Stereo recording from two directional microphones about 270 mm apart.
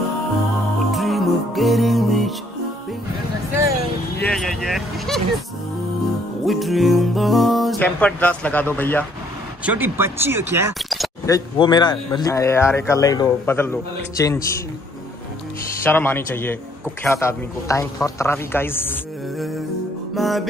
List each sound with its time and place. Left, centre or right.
0.9 s music: centre
4.2 s speech: centre
6.4 s music: centre
9.7 s speech: centre
11.2 s a man's voice: centre
15.8 s a man's voice: centre
20.2 s music: centre